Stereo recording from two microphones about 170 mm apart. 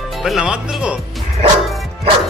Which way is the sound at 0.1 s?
Centre (ahead or behind).